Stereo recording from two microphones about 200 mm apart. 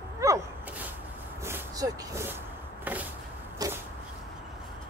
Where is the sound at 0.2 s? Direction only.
10° right (ahead or behind).